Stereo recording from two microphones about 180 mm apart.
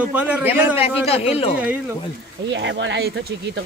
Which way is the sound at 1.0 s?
35° left (ahead or behind).